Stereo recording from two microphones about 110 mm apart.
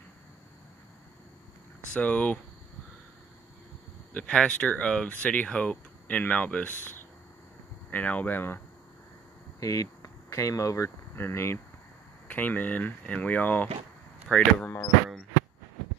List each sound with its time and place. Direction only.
2.0 s speech: 15° left (ahead or behind)
4.1 s speech: 10° left (ahead or behind)
9.6 s speech: 30° left (ahead or behind); by 14.8 s 10° left (ahead or behind)